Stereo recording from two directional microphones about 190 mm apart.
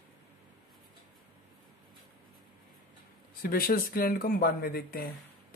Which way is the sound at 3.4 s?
50° left (ahead or behind).